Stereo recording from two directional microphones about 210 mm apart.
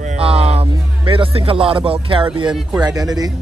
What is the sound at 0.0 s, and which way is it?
Music, 30° right (ahead or behind).